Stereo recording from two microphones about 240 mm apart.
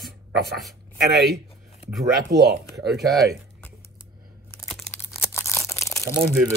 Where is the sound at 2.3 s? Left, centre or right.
Right.